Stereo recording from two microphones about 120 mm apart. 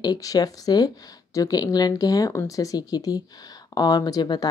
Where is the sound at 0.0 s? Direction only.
30° left (ahead or behind).